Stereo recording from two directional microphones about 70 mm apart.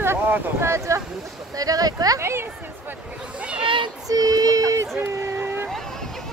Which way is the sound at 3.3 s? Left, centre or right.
Centre.